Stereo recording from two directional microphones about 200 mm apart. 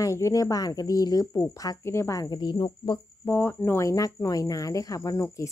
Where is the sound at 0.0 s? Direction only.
15° left (ahead or behind).